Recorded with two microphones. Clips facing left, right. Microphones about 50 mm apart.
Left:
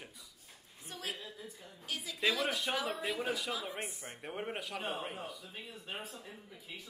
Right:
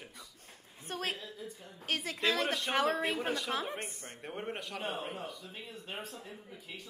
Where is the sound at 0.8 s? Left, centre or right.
Right.